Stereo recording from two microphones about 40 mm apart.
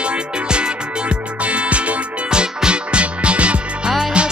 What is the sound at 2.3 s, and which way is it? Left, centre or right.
Music, right.